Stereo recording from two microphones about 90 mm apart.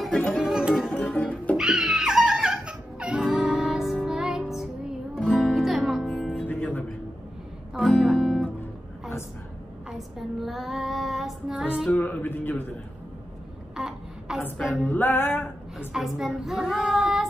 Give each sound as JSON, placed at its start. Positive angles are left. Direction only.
{"t": 0.4, "sound": "music", "side_deg": -5}
{"t": 0.8, "sound": "music", "side_deg": 15}
{"t": 1.6, "sound": "music", "side_deg": -5}
{"t": 6.3, "sound": "music", "side_deg": 20}
{"t": 7.9, "sound": "music", "side_deg": 0}
{"t": 9.8, "sound": "child singing", "side_deg": 0}
{"t": 11.9, "sound": "music", "side_deg": 20}
{"t": 13.7, "sound": "a sound", "side_deg": -5}
{"t": 14.6, "sound": "music", "side_deg": -5}
{"t": 14.9, "sound": "music", "side_deg": 20}
{"t": 15.9, "sound": "child singing", "side_deg": -5}